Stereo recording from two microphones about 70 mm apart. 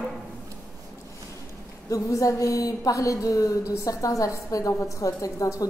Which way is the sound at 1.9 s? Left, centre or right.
Left.